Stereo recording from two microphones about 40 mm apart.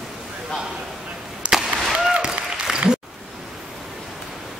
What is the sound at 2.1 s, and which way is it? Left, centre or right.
Applause, right.